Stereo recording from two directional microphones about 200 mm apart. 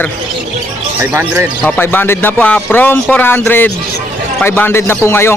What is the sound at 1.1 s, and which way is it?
Speech, 10° right (ahead or behind).